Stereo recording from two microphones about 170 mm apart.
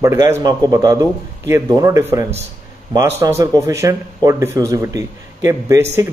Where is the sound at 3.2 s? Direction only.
20° right (ahead or behind).